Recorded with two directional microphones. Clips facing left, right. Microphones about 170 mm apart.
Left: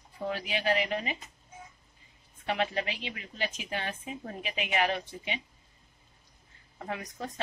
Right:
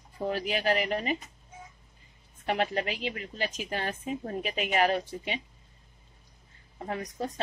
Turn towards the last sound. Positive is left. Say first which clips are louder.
# right 4 dB
turn(degrees=-35)  # may be behind; listen again after turning